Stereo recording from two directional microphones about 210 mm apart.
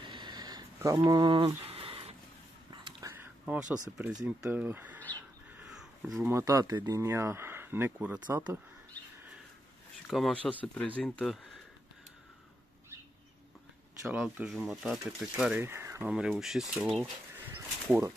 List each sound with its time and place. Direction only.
0.0 s a sound: 20° right (ahead or behind); by 3.8 s 5° right (ahead or behind)
4.4 s speech: 5° right (ahead or behind)
5.5 s a sound: 5° right (ahead or behind)
6.3 s speech: 15° right (ahead or behind)
10.0 s speech: centre (ahead or behind)
14.0 s speech: 5° right (ahead or behind)